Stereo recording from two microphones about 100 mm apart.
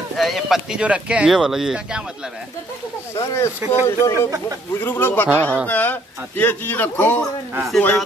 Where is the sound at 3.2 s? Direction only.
30° left (ahead or behind).